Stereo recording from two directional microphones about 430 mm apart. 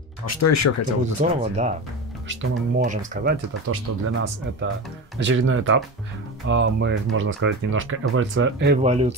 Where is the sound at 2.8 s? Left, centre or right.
Centre.